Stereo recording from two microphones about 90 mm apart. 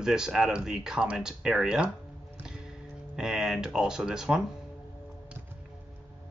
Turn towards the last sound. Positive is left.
turn(degrees=-5)  # may be behind; listen again after turning